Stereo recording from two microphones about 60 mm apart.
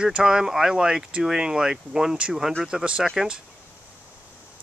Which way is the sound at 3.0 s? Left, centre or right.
Centre.